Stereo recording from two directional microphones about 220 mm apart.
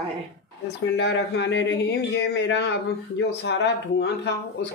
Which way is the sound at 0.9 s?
55° left (ahead or behind).